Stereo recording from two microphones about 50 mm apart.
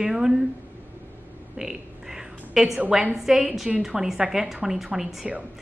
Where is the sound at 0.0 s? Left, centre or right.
Centre.